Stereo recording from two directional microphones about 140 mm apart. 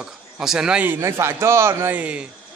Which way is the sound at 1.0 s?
20° right (ahead or behind).